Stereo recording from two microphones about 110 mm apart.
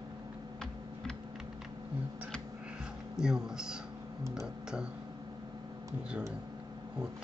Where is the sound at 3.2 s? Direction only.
5° right (ahead or behind).